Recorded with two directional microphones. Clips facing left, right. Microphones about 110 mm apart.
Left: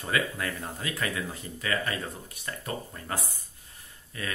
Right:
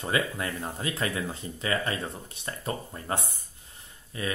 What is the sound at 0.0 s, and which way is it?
Speech, 25° right (ahead or behind).